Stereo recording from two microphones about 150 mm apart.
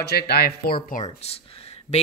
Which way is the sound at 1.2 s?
45° left (ahead or behind).